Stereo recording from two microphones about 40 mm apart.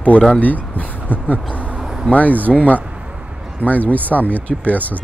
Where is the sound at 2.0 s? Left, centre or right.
Left.